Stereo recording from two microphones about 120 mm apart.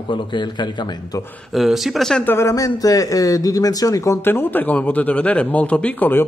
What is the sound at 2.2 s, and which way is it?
A man's voice, 20° left (ahead or behind).